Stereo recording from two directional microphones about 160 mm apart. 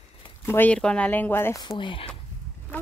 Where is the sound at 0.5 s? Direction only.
10° left (ahead or behind).